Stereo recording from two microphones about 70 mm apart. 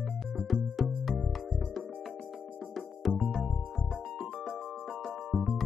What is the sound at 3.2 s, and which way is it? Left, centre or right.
Music, centre.